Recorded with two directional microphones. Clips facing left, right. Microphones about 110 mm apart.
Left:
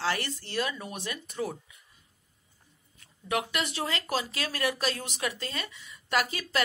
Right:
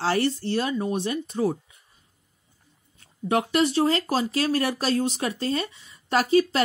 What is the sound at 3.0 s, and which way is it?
A woman's voice, 30° right (ahead or behind).